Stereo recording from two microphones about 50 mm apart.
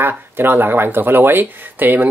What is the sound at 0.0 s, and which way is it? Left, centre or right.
Speech, right.